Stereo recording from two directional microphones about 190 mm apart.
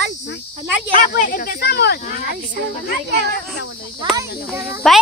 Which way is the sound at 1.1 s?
50° left (ahead or behind).